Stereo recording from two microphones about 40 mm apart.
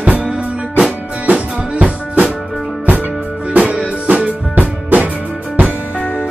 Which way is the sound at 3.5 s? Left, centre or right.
Right.